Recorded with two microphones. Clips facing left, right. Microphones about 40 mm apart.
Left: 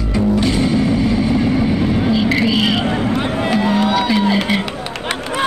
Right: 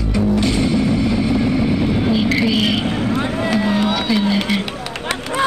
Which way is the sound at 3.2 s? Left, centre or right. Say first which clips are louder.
Left 1 dB; left.